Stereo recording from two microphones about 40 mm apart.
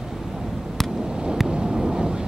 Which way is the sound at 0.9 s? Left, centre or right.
Centre.